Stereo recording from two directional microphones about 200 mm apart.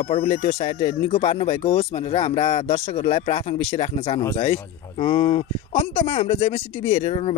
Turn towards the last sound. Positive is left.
turn(degrees=30)  # may be behind; listen again after turning